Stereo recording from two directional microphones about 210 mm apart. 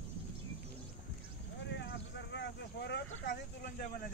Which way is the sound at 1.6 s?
55° left (ahead or behind).